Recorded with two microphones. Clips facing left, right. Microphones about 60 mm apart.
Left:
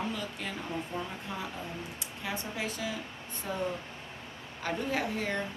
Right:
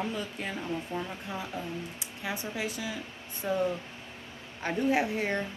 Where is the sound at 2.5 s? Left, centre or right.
Centre.